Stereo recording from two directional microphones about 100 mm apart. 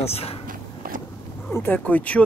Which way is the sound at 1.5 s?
20° left (ahead or behind).